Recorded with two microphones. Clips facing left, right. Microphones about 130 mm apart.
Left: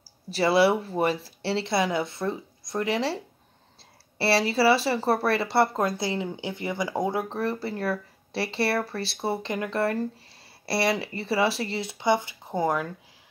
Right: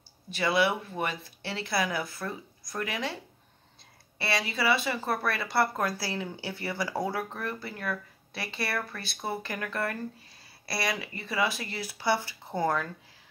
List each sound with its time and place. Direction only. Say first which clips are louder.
0.3 s speech: left 6 dB; 30° left (ahead or behind)
4.2 s speech: left 8 dB; 30° left (ahead or behind); by 12.9 s 15° left (ahead or behind)